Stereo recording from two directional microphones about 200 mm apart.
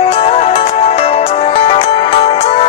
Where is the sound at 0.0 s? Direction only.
30° left (ahead or behind).